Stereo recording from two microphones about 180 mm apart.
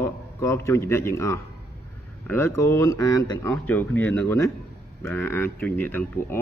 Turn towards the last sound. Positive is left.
turn(degrees=15)  # may be behind; listen again after turning